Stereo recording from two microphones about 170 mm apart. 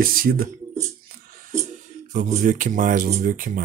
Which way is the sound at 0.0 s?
60° right (ahead or behind).